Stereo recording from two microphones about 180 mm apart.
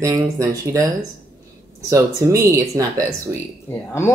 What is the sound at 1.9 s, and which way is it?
Speech, 15° right (ahead or behind).